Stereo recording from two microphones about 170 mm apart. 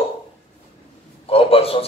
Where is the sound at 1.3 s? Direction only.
35° left (ahead or behind).